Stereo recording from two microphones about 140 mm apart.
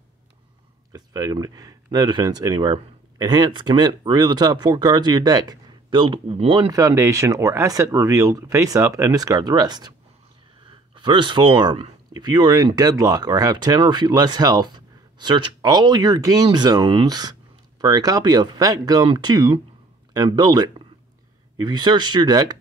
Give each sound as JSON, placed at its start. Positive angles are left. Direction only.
{"t": 0.9, "sound": "speech", "side_deg": -25}
{"t": 6.7, "sound": "speech", "side_deg": -25}
{"t": 11.0, "sound": "speech", "side_deg": -35}